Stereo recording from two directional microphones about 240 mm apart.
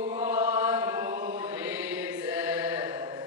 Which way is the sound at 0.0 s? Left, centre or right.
Centre.